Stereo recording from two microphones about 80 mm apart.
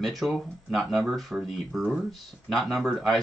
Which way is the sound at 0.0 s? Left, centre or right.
Centre.